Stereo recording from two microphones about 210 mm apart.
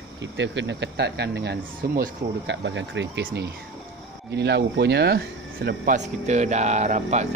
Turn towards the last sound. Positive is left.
turn(degrees=-30)  # may be behind; listen again after turning